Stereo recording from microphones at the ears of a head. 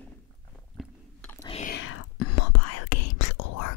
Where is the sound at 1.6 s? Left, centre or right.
Left.